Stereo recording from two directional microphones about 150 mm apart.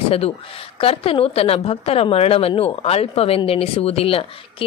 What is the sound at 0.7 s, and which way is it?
A woman's voice, 40° left (ahead or behind).